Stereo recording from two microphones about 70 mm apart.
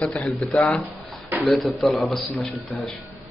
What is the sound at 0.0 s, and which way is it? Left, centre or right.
Speech, centre.